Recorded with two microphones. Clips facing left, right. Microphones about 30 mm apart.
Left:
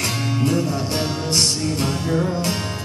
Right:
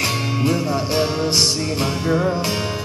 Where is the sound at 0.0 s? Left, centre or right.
Centre.